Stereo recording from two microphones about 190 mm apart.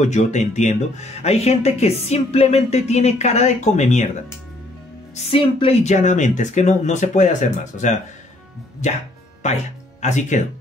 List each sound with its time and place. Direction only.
0.0 s speech: 40° left (ahead or behind)
5.1 s speech: 30° left (ahead or behind)
9.4 s speech: 40° left (ahead or behind)